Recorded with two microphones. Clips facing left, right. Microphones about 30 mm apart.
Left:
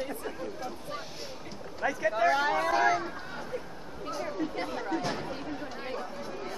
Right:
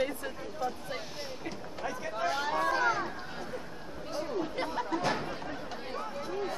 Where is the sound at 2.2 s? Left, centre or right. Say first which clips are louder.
Left 3 dB; left.